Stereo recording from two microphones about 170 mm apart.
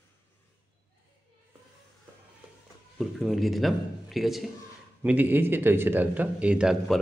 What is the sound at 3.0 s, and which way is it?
A man's voice, centre (ahead or behind).